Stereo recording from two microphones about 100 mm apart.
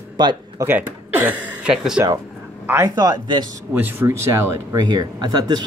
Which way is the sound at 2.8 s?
40° right (ahead or behind).